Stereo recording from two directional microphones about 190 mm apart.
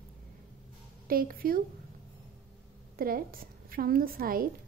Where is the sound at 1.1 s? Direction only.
50° right (ahead or behind).